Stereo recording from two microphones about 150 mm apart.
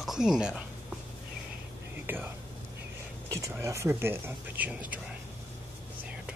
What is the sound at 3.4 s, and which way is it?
Speech, 20° right (ahead or behind).